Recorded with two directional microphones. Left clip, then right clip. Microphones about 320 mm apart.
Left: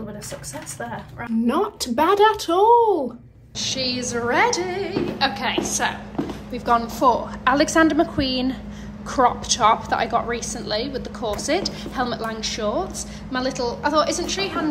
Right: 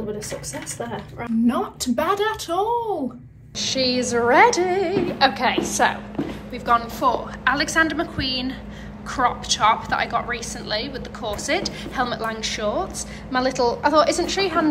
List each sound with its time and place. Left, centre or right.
1.5 s a woman's voice: centre